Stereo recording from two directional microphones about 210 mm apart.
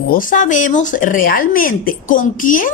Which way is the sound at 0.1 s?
40° left (ahead or behind).